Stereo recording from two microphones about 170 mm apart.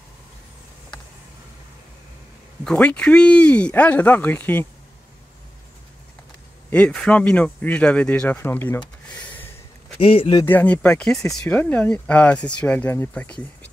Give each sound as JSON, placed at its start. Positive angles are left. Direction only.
{"t": 2.6, "sound": "speech", "side_deg": 5}
{"t": 6.7, "sound": "speech", "side_deg": 5}
{"t": 9.1, "sound": "a sound", "side_deg": 5}
{"t": 9.9, "sound": "speech", "side_deg": 35}
{"t": 10.4, "sound": "speech", "side_deg": 10}